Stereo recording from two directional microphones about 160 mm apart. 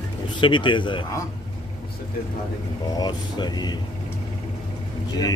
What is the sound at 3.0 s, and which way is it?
Speech, 25° left (ahead or behind).